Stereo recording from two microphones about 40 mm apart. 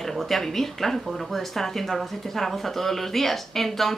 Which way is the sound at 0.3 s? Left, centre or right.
Centre.